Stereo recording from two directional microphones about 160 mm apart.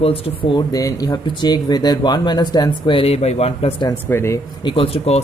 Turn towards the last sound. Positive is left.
turn(degrees=35)  # may be behind; listen again after turning